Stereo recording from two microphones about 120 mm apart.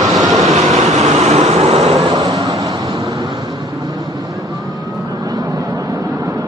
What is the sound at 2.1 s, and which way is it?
Vehicle, 35° right (ahead or behind).